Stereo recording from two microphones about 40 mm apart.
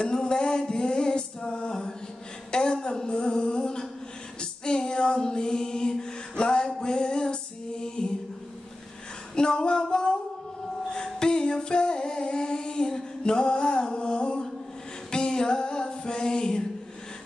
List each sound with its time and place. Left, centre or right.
0.0 s music: centre
2.5 s a sound: left
4.4 s female singing: centre
6.8 s music: centre
9.3 s music: centre
11.1 s a sound: centre
15.0 s music: centre